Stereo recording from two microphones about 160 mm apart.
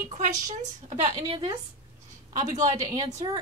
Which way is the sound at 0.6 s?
45° right (ahead or behind).